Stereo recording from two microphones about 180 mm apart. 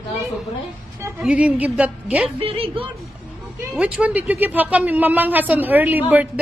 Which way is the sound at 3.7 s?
5° right (ahead or behind).